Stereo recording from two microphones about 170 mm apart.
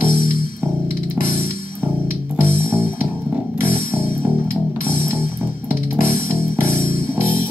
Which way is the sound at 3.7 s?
10° right (ahead or behind).